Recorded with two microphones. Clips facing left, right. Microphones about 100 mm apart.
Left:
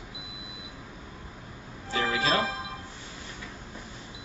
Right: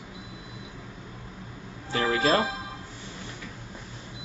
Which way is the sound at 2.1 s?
45° right (ahead or behind).